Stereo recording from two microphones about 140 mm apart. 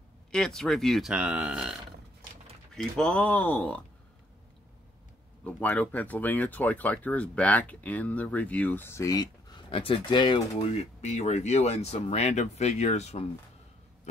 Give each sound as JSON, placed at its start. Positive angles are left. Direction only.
{"t": 0.3, "sound": "speech", "side_deg": 5}
{"t": 2.7, "sound": "speech", "side_deg": 5}
{"t": 5.4, "sound": "speech", "side_deg": 10}
{"t": 10.7, "sound": "speech", "side_deg": 50}